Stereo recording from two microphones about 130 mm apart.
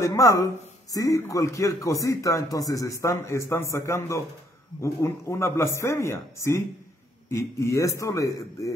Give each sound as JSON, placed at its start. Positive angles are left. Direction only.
{"t": 0.0, "sound": "a man's voice", "side_deg": 25}